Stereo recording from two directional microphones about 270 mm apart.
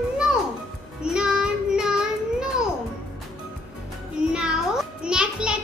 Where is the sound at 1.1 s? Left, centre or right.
Centre.